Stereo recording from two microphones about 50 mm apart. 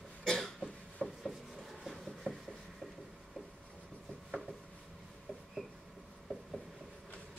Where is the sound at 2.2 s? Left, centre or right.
Centre.